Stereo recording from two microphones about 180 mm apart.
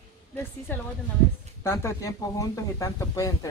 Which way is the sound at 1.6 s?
15° left (ahead or behind).